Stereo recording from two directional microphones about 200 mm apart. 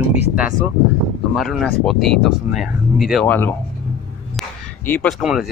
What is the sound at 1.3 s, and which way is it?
Speech, centre (ahead or behind).